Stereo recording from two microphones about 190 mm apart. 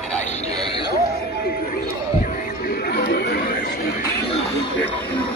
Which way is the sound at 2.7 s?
55° left (ahead or behind).